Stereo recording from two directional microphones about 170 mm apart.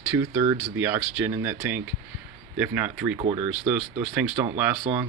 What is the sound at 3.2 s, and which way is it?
Speech, 35° right (ahead or behind).